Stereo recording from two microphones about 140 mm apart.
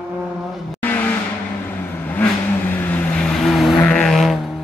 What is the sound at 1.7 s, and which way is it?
Vehicle, 10° left (ahead or behind).